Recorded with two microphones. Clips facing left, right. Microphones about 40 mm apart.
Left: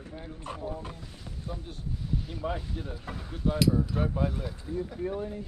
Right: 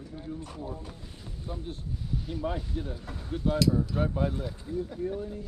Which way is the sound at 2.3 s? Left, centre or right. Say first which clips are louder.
Right 1 dB; centre.